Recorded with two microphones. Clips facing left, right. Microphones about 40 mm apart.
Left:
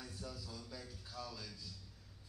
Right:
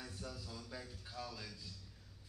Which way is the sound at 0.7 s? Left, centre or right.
Centre.